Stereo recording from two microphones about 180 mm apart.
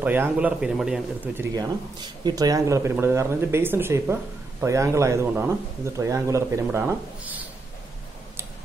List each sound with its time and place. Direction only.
0.0 s speech: 10° right (ahead or behind)
2.2 s speech: 20° right (ahead or behind)